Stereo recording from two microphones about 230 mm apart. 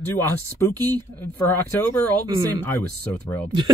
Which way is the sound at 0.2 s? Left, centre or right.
Centre.